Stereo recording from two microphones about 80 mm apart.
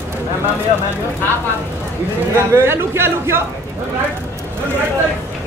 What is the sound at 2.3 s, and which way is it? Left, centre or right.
A man's voice, right.